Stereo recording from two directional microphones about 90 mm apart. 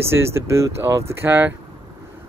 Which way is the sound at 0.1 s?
30° right (ahead or behind).